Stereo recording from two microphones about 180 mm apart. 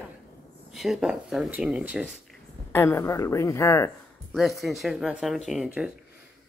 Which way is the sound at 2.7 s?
15° left (ahead or behind).